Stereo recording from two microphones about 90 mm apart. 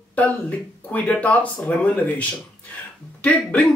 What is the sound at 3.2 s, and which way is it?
Speech, 15° left (ahead or behind).